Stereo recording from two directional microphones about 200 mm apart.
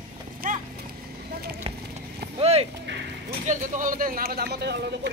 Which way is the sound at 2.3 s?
30° right (ahead or behind).